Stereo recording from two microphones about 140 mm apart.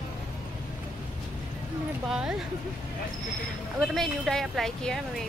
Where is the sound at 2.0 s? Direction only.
5° right (ahead or behind).